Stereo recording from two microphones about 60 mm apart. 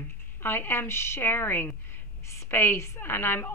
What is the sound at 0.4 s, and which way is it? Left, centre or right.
A woman's voice, left.